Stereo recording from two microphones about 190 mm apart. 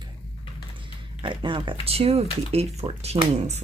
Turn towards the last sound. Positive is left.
turn(degrees=-35)  # may be behind; listen again after turning